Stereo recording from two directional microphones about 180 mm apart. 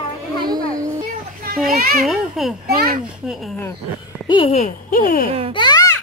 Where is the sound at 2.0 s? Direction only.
Centre (ahead or behind).